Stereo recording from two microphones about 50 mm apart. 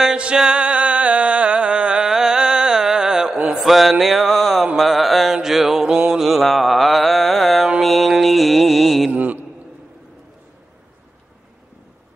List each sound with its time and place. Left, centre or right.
0.0 s music: centre
3.5 s mantra: centre
9.1 s a sound: right